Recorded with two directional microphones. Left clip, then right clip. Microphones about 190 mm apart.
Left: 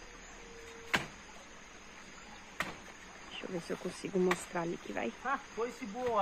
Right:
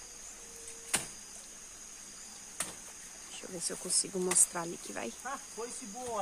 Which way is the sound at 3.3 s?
10° right (ahead or behind).